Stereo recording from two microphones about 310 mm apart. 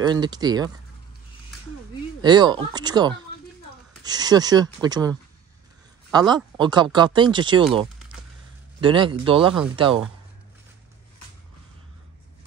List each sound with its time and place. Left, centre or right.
0.0 s speech: centre
2.2 s speech: centre
6.1 s speech: centre
8.8 s speech: centre